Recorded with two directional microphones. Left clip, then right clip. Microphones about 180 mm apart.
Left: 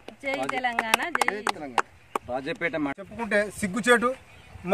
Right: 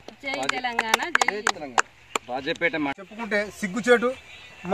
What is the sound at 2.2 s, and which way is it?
Speech, 30° left (ahead or behind).